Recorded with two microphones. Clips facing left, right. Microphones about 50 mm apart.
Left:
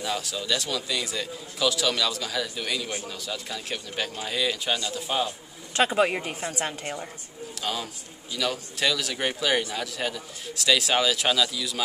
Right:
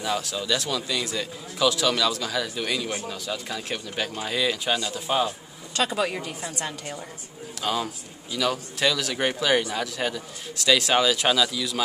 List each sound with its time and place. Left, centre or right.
0.0 s a man's voice: centre
5.7 s a woman's voice: left
7.6 s a man's voice: centre